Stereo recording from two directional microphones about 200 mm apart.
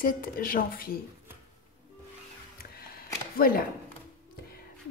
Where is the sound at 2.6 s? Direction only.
50° left (ahead or behind).